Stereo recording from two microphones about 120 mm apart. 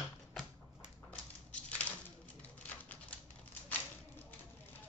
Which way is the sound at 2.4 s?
10° left (ahead or behind).